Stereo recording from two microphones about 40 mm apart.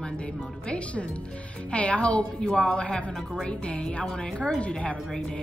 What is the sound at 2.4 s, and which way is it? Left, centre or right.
Speech, left.